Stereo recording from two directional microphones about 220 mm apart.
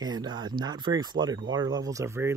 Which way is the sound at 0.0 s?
20° right (ahead or behind).